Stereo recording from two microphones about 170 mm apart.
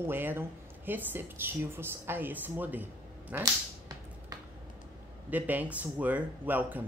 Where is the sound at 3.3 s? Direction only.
20° right (ahead or behind).